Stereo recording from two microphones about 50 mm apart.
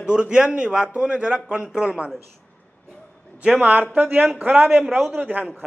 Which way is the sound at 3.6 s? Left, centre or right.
Right.